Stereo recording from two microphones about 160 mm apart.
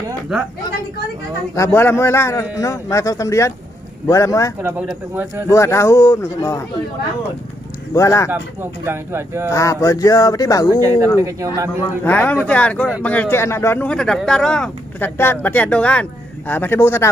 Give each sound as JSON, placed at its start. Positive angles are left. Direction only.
{"t": 1.5, "sound": "speech", "side_deg": 15}
{"t": 4.6, "sound": "speech", "side_deg": -15}
{"t": 5.5, "sound": "speech", "side_deg": 20}
{"t": 7.9, "sound": "speech", "side_deg": 20}
{"t": 8.8, "sound": "speech", "side_deg": -15}
{"t": 9.5, "sound": "speech", "side_deg": 20}
{"t": 10.7, "sound": "speech", "side_deg": -20}
{"t": 12.0, "sound": "speech", "side_deg": 10}